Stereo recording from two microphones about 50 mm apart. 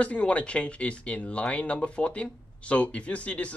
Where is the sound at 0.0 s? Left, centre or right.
Left.